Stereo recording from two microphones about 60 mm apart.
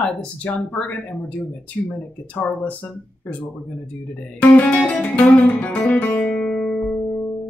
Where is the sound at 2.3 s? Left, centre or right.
Left.